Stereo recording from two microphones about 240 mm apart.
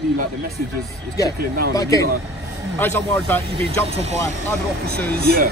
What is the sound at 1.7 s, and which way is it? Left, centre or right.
Speech, centre.